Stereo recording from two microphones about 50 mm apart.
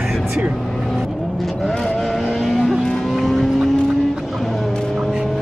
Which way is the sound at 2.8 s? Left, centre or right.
Centre.